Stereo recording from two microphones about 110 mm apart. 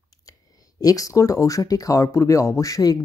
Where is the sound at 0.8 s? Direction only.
30° left (ahead or behind).